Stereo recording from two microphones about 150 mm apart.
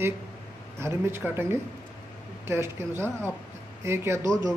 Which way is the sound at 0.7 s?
15° right (ahead or behind).